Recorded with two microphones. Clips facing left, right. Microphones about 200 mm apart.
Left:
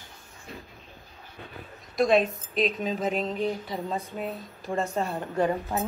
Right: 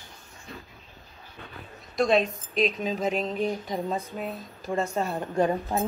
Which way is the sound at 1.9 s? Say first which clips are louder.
Left 1 dB; centre (ahead or behind).